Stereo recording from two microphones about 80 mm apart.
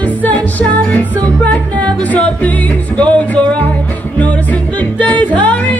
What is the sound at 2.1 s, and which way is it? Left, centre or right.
Speech, centre.